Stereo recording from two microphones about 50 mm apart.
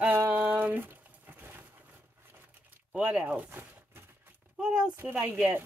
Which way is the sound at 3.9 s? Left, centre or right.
Right.